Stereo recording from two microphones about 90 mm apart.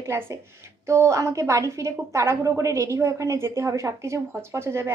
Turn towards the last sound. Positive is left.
turn(degrees=-30)  # may be behind; listen again after turning